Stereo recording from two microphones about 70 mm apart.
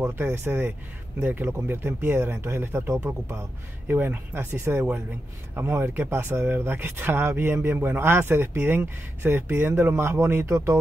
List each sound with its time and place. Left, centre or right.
0.0 s speech: right